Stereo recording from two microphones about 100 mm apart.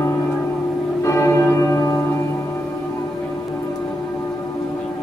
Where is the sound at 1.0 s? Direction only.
30° left (ahead or behind).